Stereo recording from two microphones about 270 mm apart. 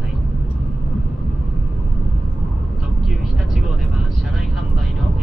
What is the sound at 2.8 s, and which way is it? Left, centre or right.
Vehicle, centre.